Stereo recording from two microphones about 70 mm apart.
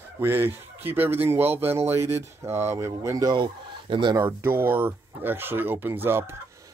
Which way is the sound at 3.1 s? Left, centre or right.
Right.